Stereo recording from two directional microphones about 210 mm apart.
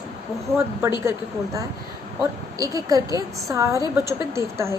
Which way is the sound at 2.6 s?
15° right (ahead or behind).